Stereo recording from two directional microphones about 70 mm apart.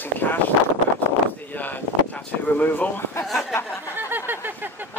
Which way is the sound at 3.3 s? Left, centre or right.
Left.